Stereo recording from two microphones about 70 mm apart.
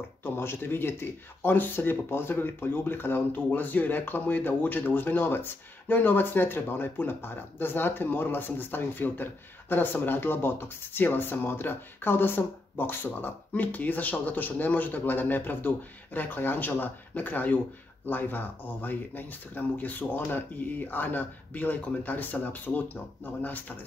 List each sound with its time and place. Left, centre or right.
0.2 s speech: left